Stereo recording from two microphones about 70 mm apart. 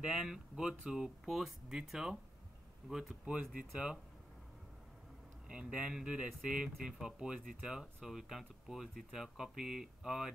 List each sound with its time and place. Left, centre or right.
0.0 s speech: centre
3.3 s speech: centre
5.5 s speech: centre